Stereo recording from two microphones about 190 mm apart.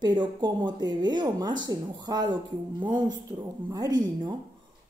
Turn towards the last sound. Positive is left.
turn(degrees=-20)  # may be behind; listen again after turning